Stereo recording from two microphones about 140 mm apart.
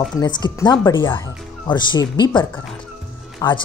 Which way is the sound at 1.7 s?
35° left (ahead or behind).